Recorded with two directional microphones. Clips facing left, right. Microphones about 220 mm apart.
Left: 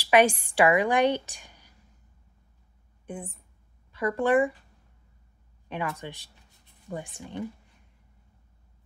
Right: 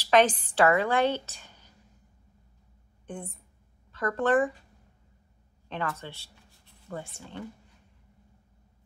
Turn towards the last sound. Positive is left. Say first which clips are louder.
# left 4 dB
turn(degrees=15)  # may be behind; listen again after turning